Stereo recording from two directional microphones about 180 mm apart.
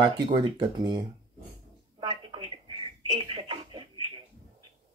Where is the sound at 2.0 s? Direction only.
25° right (ahead or behind).